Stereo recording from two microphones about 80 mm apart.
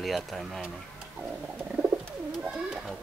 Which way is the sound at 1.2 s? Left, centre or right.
Centre.